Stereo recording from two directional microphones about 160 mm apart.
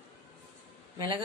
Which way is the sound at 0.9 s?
30° right (ahead or behind).